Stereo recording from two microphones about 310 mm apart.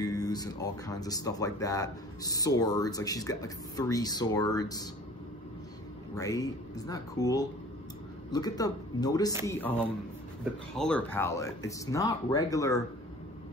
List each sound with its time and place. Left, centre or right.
0.0 s speech: centre
6.1 s speech: centre
10.8 s speech: centre